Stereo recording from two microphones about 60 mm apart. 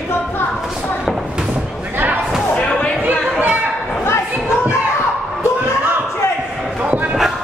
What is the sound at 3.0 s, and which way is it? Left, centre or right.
Chatter, right.